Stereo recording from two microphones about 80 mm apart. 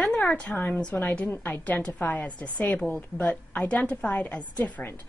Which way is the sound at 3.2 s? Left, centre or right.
Centre.